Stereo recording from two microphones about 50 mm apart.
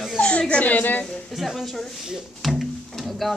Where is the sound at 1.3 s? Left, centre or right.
Centre.